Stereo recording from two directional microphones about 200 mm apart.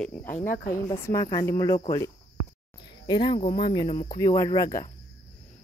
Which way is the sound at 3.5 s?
20° left (ahead or behind).